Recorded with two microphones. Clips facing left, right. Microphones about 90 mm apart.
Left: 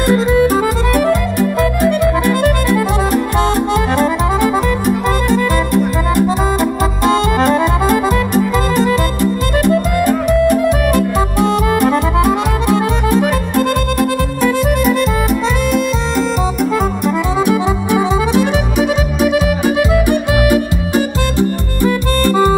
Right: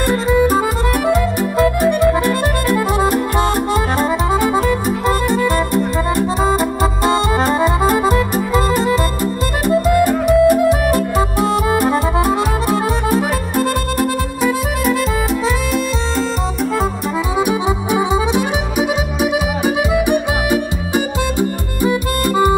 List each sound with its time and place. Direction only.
0.9 s music: 10° right (ahead or behind)
2.2 s music: 40° right (ahead or behind)
4.0 s music: 5° right (ahead or behind)
8.0 s music: 5° right (ahead or behind)
17.5 s music: 10° right (ahead or behind)
19.9 s music: 15° right (ahead or behind)